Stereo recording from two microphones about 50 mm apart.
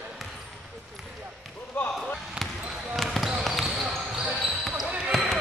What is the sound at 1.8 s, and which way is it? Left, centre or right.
Basketball bounce, left.